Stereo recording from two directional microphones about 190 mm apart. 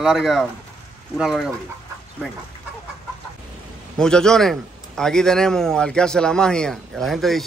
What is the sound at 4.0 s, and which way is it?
A man's voice, 5° left (ahead or behind).